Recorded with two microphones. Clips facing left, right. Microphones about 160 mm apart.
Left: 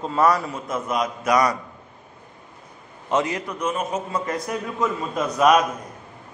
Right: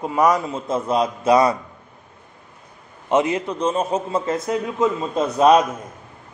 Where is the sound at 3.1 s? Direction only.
20° right (ahead or behind).